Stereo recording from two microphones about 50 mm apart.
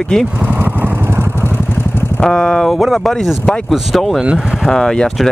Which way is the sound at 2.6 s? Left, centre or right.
Centre.